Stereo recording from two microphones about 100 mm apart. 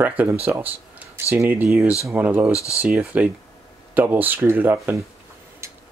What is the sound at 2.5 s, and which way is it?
Speech, 30° left (ahead or behind).